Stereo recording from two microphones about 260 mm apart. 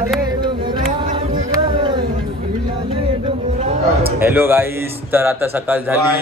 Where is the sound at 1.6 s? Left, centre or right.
Centre.